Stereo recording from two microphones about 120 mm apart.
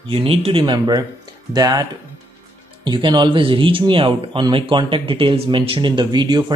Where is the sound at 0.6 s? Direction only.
35° right (ahead or behind).